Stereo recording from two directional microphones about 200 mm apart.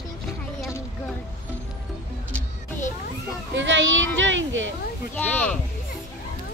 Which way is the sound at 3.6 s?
70° right (ahead or behind).